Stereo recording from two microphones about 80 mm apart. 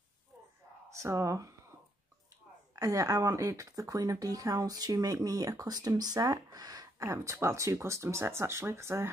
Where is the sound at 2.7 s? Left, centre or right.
Right.